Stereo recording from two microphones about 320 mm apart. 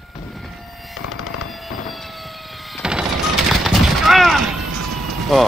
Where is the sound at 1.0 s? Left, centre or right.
Left.